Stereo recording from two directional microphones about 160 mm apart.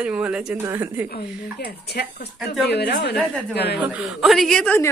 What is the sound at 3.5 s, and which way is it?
Speech, 90° left.